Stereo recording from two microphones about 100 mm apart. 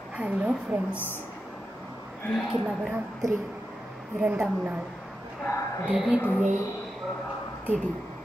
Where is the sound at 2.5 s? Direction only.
10° right (ahead or behind).